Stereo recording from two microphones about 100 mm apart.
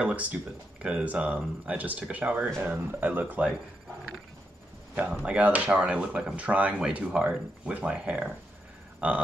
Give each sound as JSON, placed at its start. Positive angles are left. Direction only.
{"t": 0.0, "sound": "speech", "side_deg": -15}
{"t": 4.9, "sound": "speech", "side_deg": -15}